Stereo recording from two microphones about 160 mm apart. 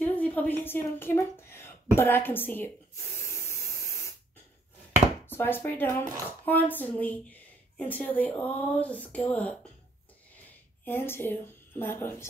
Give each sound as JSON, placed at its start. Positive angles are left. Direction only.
{"t": 0.0, "sound": "a woman's voice", "side_deg": 10}
{"t": 3.2, "sound": "a sound", "side_deg": 15}
{"t": 5.2, "sound": "a woman's voice", "side_deg": 15}
{"t": 10.9, "sound": "a woman's voice", "side_deg": 15}